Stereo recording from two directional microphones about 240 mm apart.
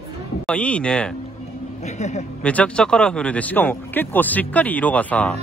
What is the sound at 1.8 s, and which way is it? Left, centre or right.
Speech, left.